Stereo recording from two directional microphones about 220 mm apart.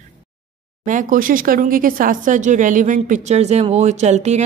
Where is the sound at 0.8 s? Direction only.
35° right (ahead or behind).